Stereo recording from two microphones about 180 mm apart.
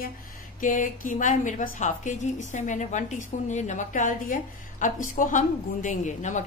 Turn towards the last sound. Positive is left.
turn(degrees=40)  # may be behind; listen again after turning